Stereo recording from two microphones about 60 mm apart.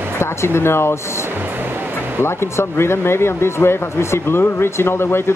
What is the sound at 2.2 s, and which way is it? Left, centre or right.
Speech, left.